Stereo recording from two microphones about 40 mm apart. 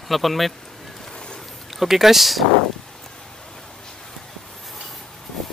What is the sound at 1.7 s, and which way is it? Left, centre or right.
Speech, centre.